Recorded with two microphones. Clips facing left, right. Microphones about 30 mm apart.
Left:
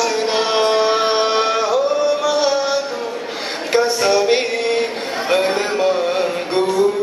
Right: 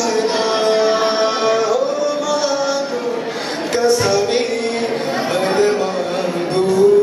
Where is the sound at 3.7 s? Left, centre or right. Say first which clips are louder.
Even; centre.